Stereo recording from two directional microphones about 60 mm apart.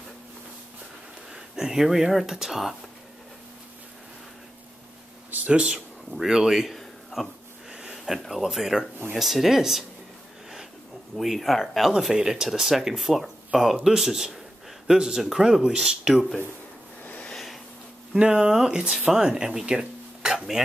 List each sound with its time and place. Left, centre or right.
1.3 s speech: centre
5.3 s a sound: right
6.1 s speech: centre
11.1 s speech: centre
12.0 s speech: centre
17.0 s a sound: left
18.1 s speech: centre